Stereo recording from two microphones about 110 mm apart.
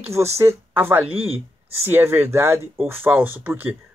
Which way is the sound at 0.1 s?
25° right (ahead or behind).